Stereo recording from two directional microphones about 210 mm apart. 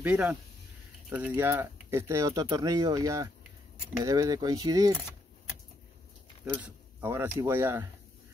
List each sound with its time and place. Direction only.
0.0 s speech: 5° right (ahead or behind)
6.5 s speech: 10° right (ahead or behind)